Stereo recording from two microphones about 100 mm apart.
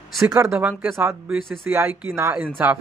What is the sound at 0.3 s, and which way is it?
Speech, 25° right (ahead or behind).